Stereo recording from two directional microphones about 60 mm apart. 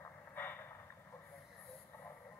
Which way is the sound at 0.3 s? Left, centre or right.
Left.